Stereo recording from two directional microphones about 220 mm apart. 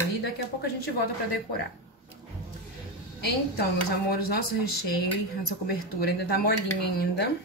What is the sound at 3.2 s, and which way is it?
A woman's voice, 45° left (ahead or behind).